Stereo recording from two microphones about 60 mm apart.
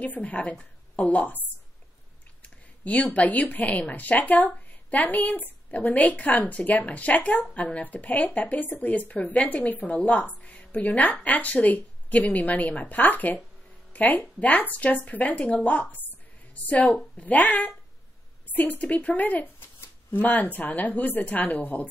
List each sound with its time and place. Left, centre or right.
0.0 s speech: left
2.4 s speech: left